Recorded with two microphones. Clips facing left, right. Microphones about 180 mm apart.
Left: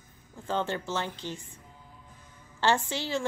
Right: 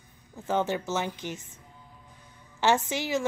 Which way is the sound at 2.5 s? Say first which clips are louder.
Right 2 dB; 10° right (ahead or behind).